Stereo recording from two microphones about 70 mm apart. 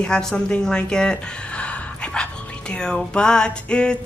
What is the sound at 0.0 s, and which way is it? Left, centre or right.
Music, centre.